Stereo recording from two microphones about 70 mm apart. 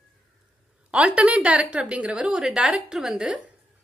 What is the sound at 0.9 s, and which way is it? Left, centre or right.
A woman's voice, centre.